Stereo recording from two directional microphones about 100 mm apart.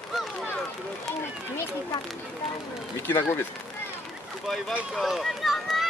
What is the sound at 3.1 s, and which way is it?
Speech, 20° left (ahead or behind).